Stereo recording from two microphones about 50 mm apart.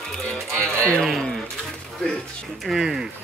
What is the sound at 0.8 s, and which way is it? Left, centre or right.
Speech, centre.